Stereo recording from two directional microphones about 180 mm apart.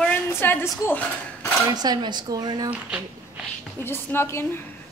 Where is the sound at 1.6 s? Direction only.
20° right (ahead or behind).